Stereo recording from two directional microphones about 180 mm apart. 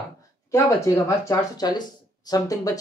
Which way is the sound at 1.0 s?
20° left (ahead or behind).